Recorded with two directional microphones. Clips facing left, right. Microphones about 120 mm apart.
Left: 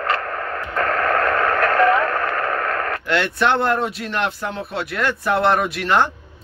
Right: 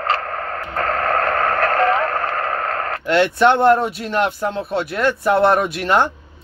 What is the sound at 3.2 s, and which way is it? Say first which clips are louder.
Speech: right 7 dB; 25° right (ahead or behind).